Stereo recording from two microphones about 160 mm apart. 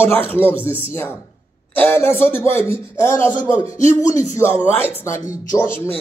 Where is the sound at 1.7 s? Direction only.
15° left (ahead or behind).